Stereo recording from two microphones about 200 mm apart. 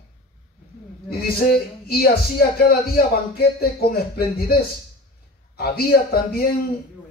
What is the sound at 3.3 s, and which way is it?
Speech, 50° left (ahead or behind).